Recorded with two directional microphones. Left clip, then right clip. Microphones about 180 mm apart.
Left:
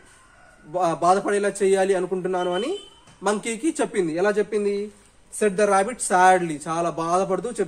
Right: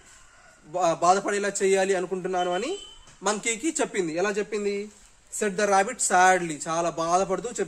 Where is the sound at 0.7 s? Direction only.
15° right (ahead or behind).